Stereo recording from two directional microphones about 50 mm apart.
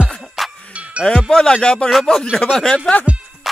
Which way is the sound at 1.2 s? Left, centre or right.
Centre.